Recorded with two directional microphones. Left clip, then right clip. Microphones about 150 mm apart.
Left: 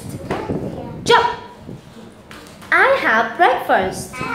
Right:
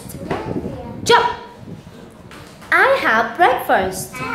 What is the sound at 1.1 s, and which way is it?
Speech, 25° right (ahead or behind).